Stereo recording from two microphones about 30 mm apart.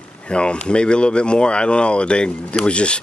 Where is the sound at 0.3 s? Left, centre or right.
Left.